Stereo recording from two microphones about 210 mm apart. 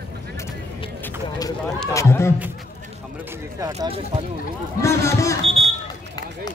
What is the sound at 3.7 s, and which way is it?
Speech, 30° right (ahead or behind).